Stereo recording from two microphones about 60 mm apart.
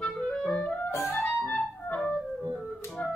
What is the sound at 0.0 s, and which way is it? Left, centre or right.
Clarinet, centre.